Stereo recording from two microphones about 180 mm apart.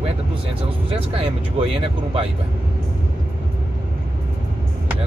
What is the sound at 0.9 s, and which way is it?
Speech, 30° right (ahead or behind).